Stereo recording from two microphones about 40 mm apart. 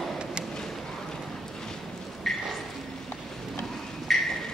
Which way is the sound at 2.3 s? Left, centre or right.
Centre.